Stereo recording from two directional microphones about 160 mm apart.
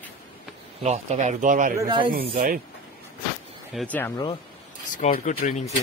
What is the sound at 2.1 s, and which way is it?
Speech, 65° right (ahead or behind).